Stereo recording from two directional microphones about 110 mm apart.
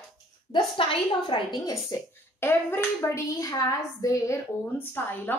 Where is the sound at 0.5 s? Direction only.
50° left (ahead or behind).